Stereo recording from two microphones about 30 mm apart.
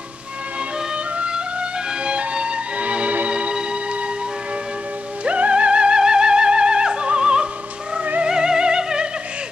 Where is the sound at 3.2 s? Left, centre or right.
Right.